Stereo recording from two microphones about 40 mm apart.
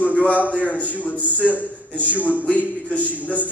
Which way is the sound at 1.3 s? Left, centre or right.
Right.